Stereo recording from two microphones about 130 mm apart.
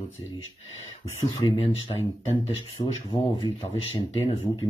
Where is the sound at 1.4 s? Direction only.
40° left (ahead or behind).